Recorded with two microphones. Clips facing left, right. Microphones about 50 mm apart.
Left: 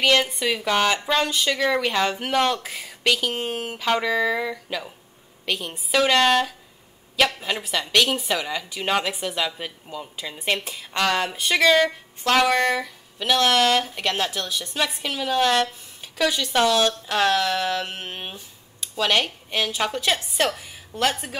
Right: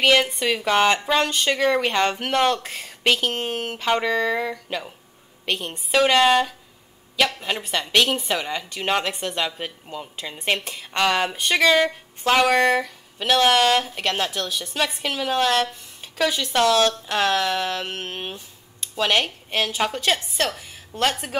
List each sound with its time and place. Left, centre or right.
0.0 s a woman's voice: centre
3.0 s speech: right
3.3 s a woman's voice: centre
7.9 s a woman's voice: centre